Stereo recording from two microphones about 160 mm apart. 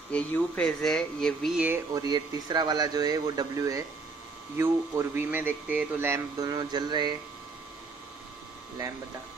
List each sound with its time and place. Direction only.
0.1 s speech: 10° left (ahead or behind)
2.0 s speech: 25° right (ahead or behind)